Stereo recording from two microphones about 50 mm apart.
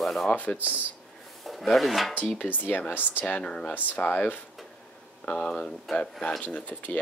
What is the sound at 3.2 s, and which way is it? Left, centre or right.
Speech, left.